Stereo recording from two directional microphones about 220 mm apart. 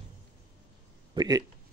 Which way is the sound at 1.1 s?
15° right (ahead or behind).